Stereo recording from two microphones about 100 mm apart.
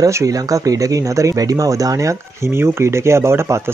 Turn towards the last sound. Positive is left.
turn(degrees=-25)  # may be behind; listen again after turning